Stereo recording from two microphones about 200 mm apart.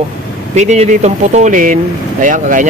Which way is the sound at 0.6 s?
35° right (ahead or behind).